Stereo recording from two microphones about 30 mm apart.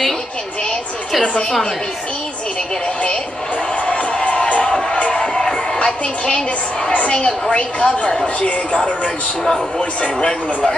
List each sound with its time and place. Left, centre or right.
3.8 s music: left
5.2 s music: centre
5.8 s speech: left
9.8 s speech: left